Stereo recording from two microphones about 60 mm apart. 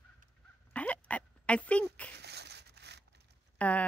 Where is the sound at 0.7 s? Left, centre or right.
Left.